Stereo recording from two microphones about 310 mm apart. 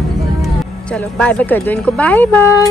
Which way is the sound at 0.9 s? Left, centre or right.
Centre.